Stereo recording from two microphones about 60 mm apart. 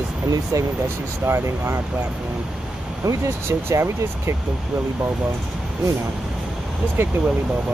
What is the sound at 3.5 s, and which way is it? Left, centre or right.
Speech, right.